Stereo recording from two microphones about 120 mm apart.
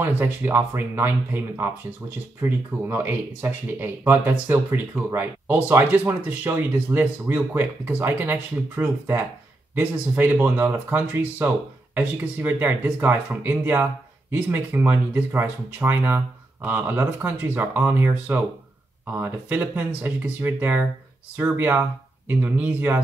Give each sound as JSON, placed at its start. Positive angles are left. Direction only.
{"t": 0.0, "sound": "speech", "side_deg": -20}